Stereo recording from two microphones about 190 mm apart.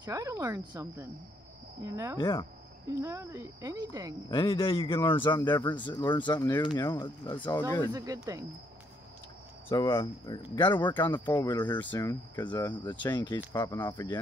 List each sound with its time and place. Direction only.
0.0 s speech: 15° right (ahead or behind)
2.1 s speech: 25° left (ahead or behind)
2.9 s speech: 15° right (ahead or behind)
4.3 s speech: 30° left (ahead or behind)
7.9 s speech: 20° right (ahead or behind)
9.7 s speech: 25° left (ahead or behind)